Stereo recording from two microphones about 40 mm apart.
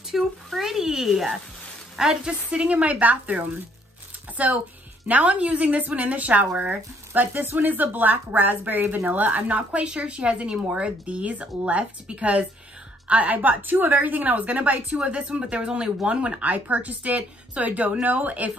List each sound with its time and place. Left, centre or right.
0.1 s a sound: centre
2.2 s speech: right
5.2 s speech: right
15.0 s speech: right